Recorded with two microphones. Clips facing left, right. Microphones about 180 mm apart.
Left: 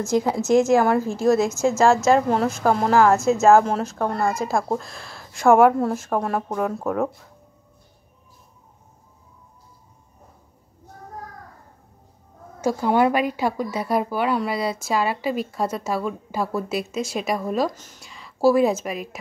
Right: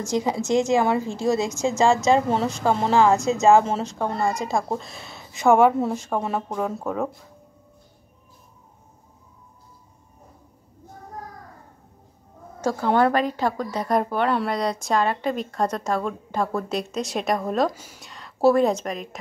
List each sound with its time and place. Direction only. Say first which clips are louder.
0.3 s a woman's voice: left 3 dB; 10° left (ahead or behind)
0.7 s a woman's voice: left 3 dB; 15° right (ahead or behind)
1.6 s speech: left 2 dB; 5° left (ahead or behind)
3.0 s a woman's voice: left 1 dB; 15° right (ahead or behind)
3.3 s speech: left 1 dB; 5° left (ahead or behind)
12.6 s a woman's voice: left 1 dB; 10° left (ahead or behind)